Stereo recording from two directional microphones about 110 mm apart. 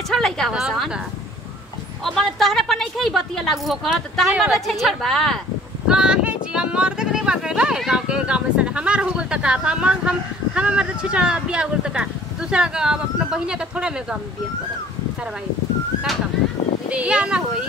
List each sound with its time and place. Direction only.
0.1 s a woman's voice: 5° left (ahead or behind)
2.0 s a woman's voice: centre (ahead or behind)
5.9 s speech: 10° right (ahead or behind)
16.9 s speech: 10° right (ahead or behind)